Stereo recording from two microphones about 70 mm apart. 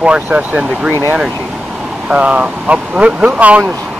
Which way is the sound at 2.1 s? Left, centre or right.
Centre.